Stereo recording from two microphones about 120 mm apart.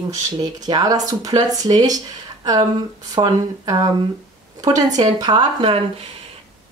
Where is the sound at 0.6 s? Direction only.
30° right (ahead or behind).